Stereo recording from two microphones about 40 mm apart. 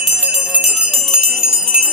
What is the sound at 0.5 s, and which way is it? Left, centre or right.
Bell, right.